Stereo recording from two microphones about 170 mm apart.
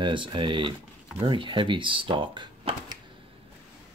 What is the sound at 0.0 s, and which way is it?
Speech, 30° right (ahead or behind).